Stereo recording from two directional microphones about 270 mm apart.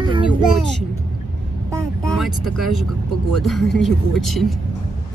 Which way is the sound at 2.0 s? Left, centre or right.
Centre.